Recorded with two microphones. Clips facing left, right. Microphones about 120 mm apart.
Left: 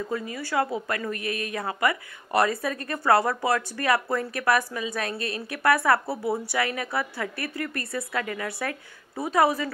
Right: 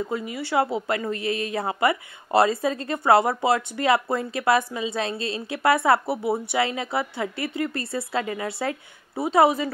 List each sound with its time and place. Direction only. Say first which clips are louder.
0.1 s speech: right 1 dB; 20° right (ahead or behind)